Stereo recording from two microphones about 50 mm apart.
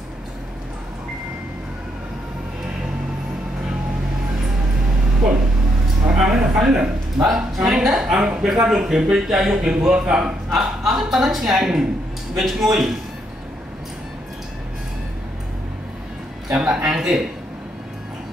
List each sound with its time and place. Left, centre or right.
6.0 s a sound: centre
6.7 s speech: right
7.3 s speech: centre
10.5 s a man's voice: centre
16.4 s speech: centre